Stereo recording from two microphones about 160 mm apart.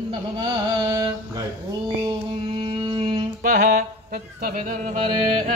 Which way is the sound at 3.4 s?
60° right (ahead or behind).